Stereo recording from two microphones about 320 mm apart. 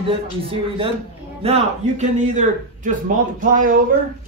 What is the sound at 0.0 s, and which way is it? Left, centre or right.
A man's voice, centre.